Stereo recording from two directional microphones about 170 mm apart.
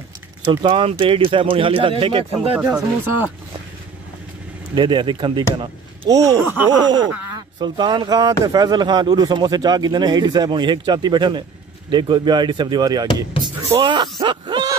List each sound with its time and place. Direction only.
0.5 s speech: 30° right (ahead or behind)
2.6 s speech: 5° right (ahead or behind)
4.7 s speech: 25° right (ahead or behind)